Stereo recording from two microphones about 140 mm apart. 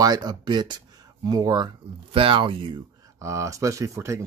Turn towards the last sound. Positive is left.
turn(degrees=-20)  # may be behind; listen again after turning